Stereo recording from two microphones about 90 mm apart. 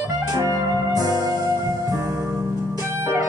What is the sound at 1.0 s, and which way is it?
Music, 40° left (ahead or behind).